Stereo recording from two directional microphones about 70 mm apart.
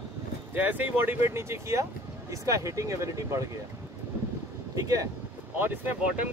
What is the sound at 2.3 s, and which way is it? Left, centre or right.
Speech, right.